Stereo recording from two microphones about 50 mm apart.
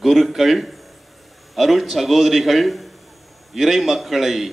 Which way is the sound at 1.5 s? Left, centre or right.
Centre.